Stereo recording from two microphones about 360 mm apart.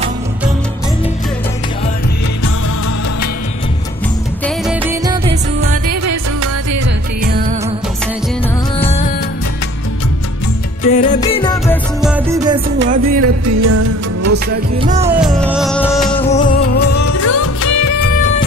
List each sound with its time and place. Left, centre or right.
4.6 s music: centre
5.3 s music: right
7.2 s music: right
8.7 s music: centre
10.8 s music: centre
11.6 s music: centre
12.7 s music: right
13.0 s music: right
14.8 s music: centre
15.0 s music: centre
16.1 s music: centre
16.9 s music: left